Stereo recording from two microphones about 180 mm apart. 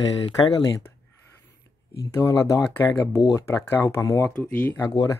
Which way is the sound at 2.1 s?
15° left (ahead or behind).